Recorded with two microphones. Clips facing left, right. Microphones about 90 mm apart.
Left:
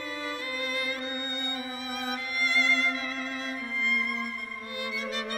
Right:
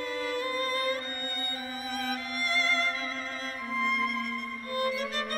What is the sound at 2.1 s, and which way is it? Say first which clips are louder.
Music: left 4 dB; 35° right (ahead or behind).